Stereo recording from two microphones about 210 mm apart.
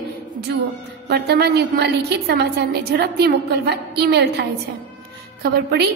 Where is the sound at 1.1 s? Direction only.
50° right (ahead or behind).